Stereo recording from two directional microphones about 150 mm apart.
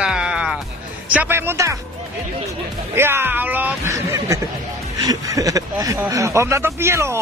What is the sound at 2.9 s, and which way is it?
A man's voice, 15° right (ahead or behind).